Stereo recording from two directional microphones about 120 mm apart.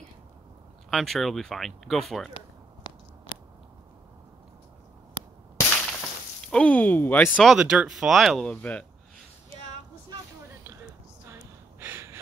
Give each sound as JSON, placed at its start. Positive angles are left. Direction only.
{"t": 0.8, "sound": "speech", "side_deg": 0}
{"t": 2.8, "sound": "biting", "side_deg": 35}
{"t": 5.6, "sound": "whip", "side_deg": 10}
{"t": 6.5, "sound": "speech", "side_deg": 10}
{"t": 7.5, "sound": "speech", "side_deg": -5}
{"t": 11.8, "sound": "gasp", "side_deg": -20}